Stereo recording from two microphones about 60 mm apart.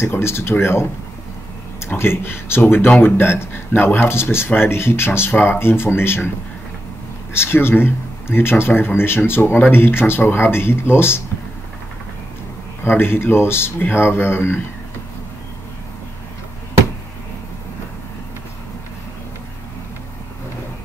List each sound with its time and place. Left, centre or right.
0.0 s speech: left
2.0 s speech: left
7.3 s speech: left
12.8 s speech: left